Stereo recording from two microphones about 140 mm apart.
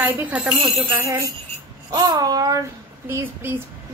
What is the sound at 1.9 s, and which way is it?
A woman's voice, 30° right (ahead or behind).